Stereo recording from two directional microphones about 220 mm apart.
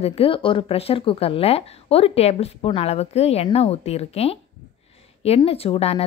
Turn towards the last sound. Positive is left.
turn(degrees=25)  # may be behind; listen again after turning